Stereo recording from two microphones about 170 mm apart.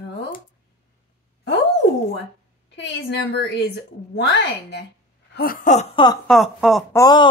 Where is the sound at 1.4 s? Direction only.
85° left.